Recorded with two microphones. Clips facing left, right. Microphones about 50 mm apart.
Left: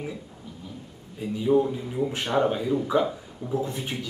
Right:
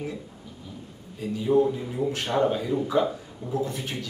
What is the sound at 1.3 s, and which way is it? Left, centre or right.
A man's voice, centre.